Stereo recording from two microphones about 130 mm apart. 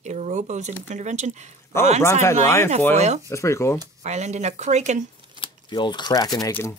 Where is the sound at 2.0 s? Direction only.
20° left (ahead or behind).